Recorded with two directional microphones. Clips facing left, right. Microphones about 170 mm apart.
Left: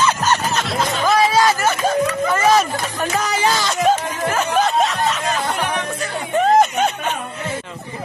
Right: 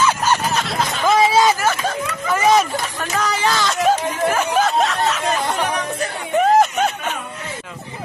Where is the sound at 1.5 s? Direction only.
Centre (ahead or behind).